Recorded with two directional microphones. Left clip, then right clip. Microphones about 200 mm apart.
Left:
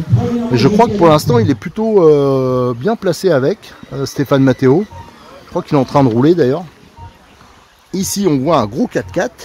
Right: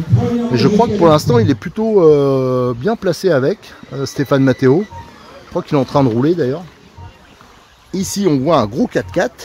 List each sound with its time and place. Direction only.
0.1 s a man's voice: 15° left (ahead or behind)
6.2 s speech: 30° left (ahead or behind)
7.9 s speech: 5° left (ahead or behind)